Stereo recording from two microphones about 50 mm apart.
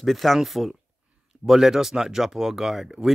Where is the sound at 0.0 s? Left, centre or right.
Centre.